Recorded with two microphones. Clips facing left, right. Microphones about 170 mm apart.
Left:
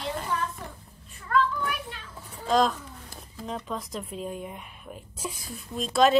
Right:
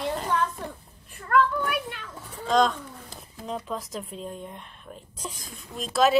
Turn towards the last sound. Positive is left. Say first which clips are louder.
# left 1 dB
turn(degrees=0)  # may be behind; listen again after turning